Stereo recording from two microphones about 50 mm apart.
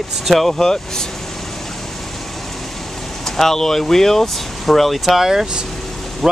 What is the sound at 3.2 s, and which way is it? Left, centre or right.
Speech, centre.